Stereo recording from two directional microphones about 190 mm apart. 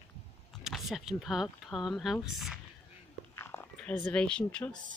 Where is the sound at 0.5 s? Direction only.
Centre (ahead or behind).